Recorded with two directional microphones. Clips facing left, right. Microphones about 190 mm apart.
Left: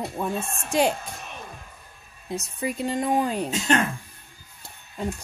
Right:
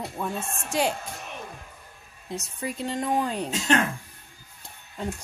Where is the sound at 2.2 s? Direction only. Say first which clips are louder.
Left 4 dB; 10° left (ahead or behind).